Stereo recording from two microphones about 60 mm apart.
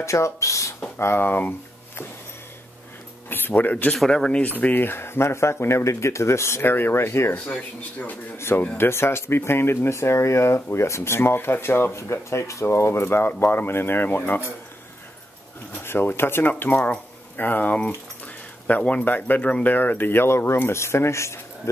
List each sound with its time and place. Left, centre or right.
0.0 s speech: left
0.9 s speech: left
3.3 s speech: left
4.1 s speech: centre
4.6 s speech: left
8.4 s speech: left
15.8 s speech: left
17.7 s keys jangling: left
19.0 s speech: left